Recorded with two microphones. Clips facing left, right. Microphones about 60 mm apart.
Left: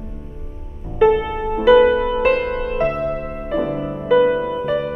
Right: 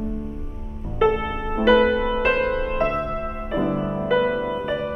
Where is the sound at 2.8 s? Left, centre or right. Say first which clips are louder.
Left 4 dB; right.